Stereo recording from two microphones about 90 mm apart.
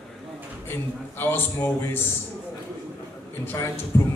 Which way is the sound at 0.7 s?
25° left (ahead or behind).